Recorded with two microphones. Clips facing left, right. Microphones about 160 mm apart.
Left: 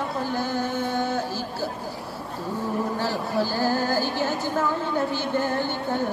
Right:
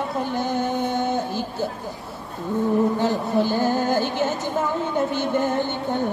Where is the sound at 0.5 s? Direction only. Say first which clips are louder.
Right 3 dB; 20° right (ahead or behind).